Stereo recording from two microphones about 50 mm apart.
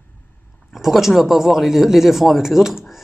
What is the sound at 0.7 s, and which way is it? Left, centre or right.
Speech, centre.